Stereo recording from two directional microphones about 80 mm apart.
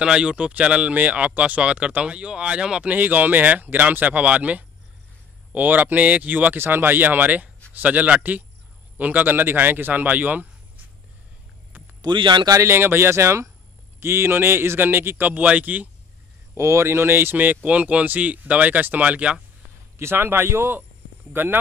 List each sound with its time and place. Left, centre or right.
0.0 s a man's voice: centre
12.0 s speech: right
12.6 s a man's voice: right
16.5 s a man's voice: right; by 19.4 s centre
20.0 s a man's voice: right